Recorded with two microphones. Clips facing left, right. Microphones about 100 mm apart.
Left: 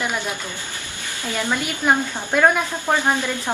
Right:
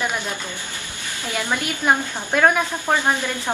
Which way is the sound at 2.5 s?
15° right (ahead or behind).